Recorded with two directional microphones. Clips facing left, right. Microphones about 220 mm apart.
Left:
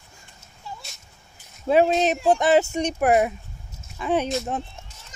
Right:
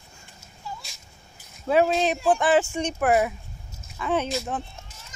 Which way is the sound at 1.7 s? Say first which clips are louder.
Left 2 dB; 20° left (ahead or behind).